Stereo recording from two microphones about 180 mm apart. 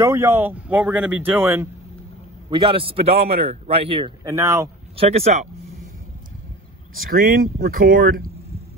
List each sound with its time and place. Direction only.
0.0 s speech: 15° right (ahead or behind)
2.5 s a man's voice: 30° right (ahead or behind)
4.2 s speech: 15° right (ahead or behind)
4.9 s a man's voice: 35° right (ahead or behind)
7.1 s speech: 55° right (ahead or behind)